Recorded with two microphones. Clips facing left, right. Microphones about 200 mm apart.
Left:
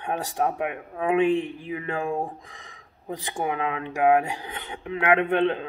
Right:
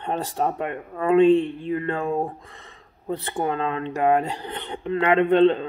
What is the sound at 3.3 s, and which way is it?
Speech, 10° left (ahead or behind).